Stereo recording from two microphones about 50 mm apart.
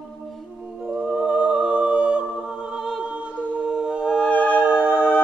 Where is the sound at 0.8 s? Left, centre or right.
Right.